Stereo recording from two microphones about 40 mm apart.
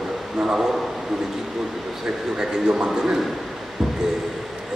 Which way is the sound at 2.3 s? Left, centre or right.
Centre.